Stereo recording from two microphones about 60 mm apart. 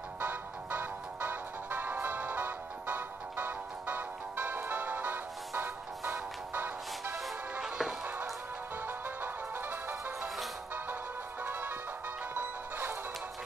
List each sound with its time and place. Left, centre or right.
0.2 s music: right
7.6 s music: centre
8.8 s music: right
10.2 s music: centre
11.4 s music: right